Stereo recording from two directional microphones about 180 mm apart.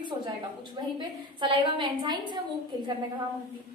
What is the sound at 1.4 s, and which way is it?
A woman's voice, 25° right (ahead or behind).